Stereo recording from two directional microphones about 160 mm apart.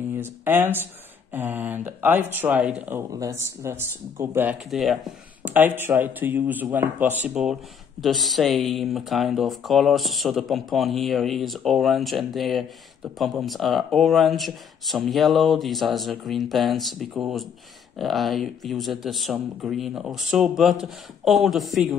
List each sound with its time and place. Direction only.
0.2 s speech: 15° right (ahead or behind)
4.6 s speech: centre (ahead or behind)
5.4 s speech: 10° right (ahead or behind)